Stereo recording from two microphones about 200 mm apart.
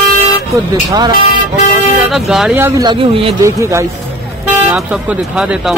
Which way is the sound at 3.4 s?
15° right (ahead or behind).